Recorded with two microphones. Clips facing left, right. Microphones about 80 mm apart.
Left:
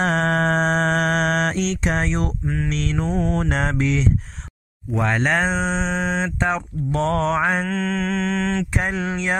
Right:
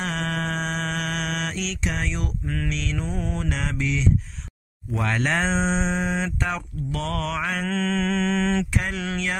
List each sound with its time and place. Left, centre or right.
0.0 s mantra: left
2.4 s speech: left
2.7 s mantra: left
5.0 s speech: centre
7.6 s mantra: centre
8.7 s speech: left